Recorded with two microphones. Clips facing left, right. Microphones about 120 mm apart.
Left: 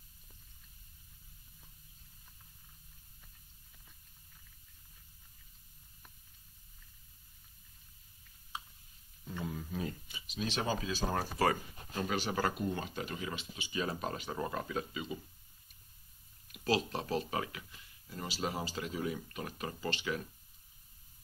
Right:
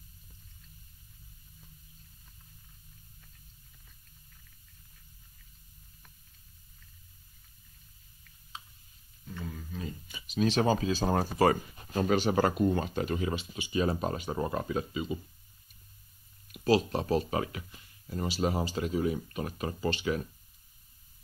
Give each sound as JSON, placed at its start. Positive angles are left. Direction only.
{"t": 8.2, "sound": "a sound", "side_deg": 15}
{"t": 10.0, "sound": "speech", "side_deg": -45}
{"t": 16.6, "sound": "speech", "side_deg": -40}